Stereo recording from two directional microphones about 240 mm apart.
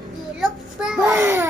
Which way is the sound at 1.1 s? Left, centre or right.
Centre.